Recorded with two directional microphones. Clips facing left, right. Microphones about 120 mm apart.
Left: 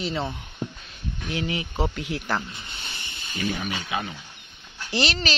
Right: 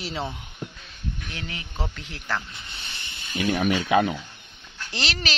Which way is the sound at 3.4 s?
60° right (ahead or behind).